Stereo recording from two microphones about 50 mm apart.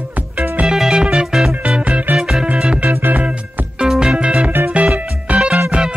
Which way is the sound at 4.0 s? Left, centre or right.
Centre.